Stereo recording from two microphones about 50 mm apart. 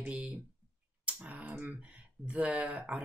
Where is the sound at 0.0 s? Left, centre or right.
Right.